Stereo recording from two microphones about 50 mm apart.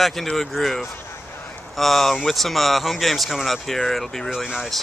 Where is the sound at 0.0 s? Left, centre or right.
Centre.